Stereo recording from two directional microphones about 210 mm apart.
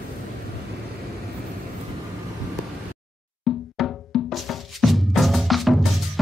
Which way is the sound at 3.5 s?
Centre (ahead or behind).